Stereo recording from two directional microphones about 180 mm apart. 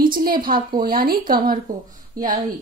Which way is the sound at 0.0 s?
50° right (ahead or behind).